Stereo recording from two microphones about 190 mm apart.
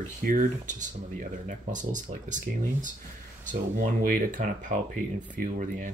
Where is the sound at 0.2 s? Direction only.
45° right (ahead or behind).